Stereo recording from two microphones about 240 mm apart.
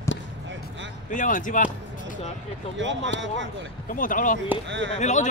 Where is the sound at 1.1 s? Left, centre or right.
Left.